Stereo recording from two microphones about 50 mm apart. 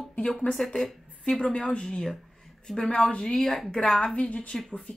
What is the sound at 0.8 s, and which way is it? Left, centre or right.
A woman's voice, centre.